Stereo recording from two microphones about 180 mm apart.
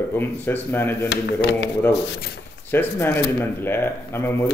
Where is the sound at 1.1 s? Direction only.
70° left (ahead or behind).